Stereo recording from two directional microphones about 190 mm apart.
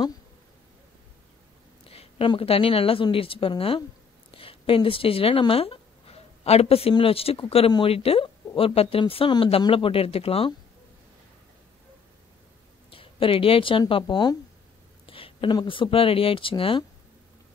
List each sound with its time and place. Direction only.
1.9 s a woman's voice: 30° left (ahead or behind)
12.9 s speech: 30° left (ahead or behind)